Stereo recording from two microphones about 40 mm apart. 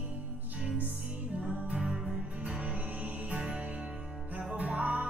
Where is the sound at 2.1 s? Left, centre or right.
Right.